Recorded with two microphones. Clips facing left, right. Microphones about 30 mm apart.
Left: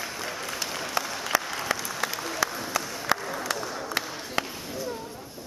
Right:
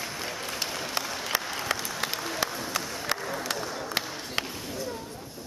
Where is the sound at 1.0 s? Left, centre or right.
Right.